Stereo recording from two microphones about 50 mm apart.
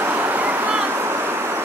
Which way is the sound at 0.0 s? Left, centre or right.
Right.